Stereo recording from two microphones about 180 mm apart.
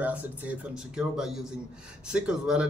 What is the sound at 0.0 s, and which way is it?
Speech, 10° right (ahead or behind).